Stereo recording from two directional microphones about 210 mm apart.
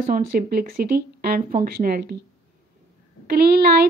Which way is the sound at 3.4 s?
50° right (ahead or behind).